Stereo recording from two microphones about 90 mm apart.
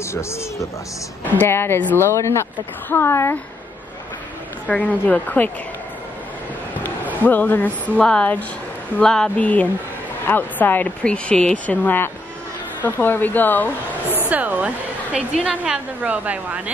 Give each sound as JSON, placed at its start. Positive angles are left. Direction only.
{"t": 0.0, "sound": "speech", "side_deg": 30}
{"t": 4.6, "sound": "speech", "side_deg": 15}
{"t": 7.2, "sound": "speech", "side_deg": 20}
{"t": 14.3, "sound": "a sound", "side_deg": -20}
{"t": 15.1, "sound": "a woman's voice", "side_deg": -10}